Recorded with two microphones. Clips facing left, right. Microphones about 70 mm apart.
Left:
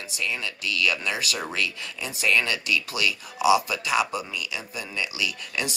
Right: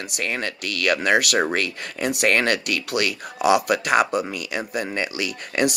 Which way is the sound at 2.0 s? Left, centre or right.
Right.